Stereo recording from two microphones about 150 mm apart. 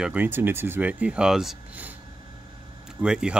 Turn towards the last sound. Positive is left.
turn(degrees=-5)  # may be behind; listen again after turning